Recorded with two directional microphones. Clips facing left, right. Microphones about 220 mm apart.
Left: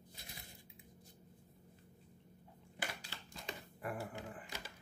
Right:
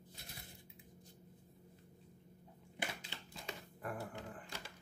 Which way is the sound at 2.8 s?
20° right (ahead or behind).